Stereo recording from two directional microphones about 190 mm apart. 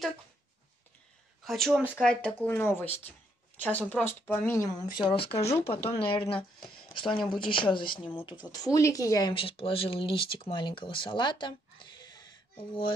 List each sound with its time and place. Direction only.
1.4 s speech: centre (ahead or behind); by 5.2 s 25° left (ahead or behind)
5.3 s speech: 35° left (ahead or behind)
6.8 s a sound: 25° left (ahead or behind)
7.2 s speech: 25° left (ahead or behind)